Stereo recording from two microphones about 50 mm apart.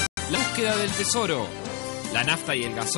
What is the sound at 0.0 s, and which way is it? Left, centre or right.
Music, left.